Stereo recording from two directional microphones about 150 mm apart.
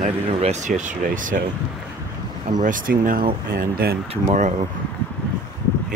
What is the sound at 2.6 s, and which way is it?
Speech, 65° right (ahead or behind).